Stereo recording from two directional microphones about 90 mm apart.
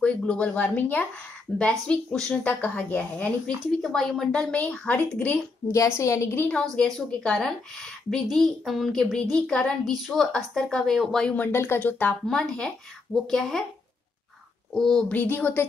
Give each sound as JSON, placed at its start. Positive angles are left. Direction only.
{"t": 0.0, "sound": "speech", "side_deg": 15}
{"t": 3.8, "sound": "speech", "side_deg": 5}
{"t": 5.7, "sound": "a woman's voice", "side_deg": 35}
{"t": 6.6, "sound": "a woman's voice", "side_deg": 10}
{"t": 11.3, "sound": "speech", "side_deg": 25}
{"t": 12.3, "sound": "a woman's voice", "side_deg": 5}
{"t": 14.7, "sound": "a woman's voice", "side_deg": 5}
{"t": 15.1, "sound": "speech", "side_deg": 20}